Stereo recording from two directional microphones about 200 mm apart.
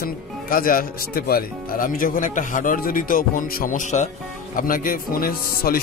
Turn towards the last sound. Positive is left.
turn(degrees=45)  # may be behind; listen again after turning